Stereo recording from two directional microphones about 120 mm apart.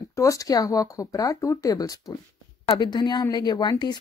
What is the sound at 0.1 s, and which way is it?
Speech, 25° left (ahead or behind).